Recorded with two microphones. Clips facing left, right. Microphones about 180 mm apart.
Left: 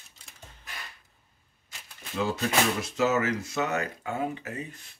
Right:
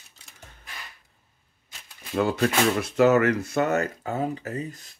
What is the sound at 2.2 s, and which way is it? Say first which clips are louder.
Speech: right 4 dB; 60° right (ahead or behind).